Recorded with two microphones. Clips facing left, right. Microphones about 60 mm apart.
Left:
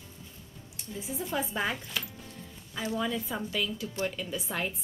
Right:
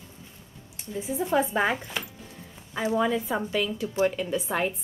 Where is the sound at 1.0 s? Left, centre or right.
Centre.